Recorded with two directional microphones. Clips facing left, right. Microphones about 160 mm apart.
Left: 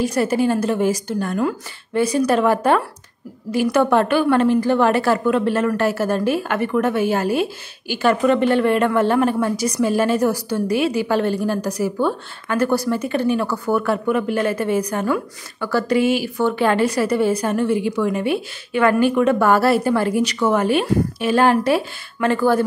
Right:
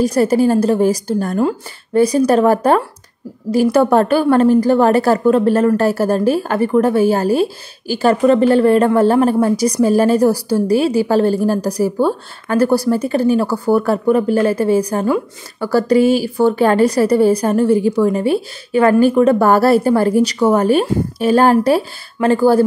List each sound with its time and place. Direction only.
0.0 s a woman's voice: 40° right (ahead or behind)